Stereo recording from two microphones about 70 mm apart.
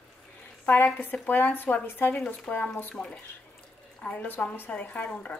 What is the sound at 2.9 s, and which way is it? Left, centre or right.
Speech, centre.